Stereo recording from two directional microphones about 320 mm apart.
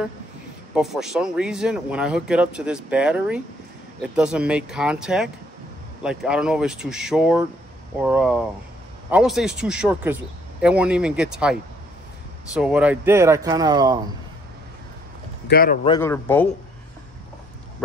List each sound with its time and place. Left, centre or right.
0.7 s speech: centre
12.5 s speech: centre
15.5 s speech: left
15.9 s speech: centre